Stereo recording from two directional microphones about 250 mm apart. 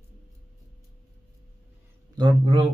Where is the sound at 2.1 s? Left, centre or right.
Centre.